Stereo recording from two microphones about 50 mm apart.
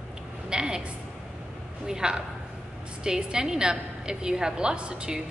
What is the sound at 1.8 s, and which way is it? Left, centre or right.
A woman's voice, centre.